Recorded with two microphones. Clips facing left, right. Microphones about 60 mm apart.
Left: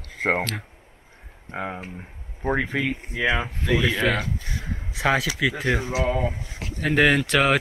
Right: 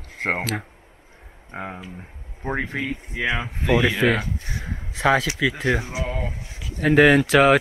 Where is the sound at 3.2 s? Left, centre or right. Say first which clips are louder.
Left 1 dB; left.